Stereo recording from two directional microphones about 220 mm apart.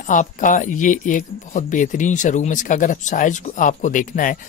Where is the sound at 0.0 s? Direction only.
35° left (ahead or behind).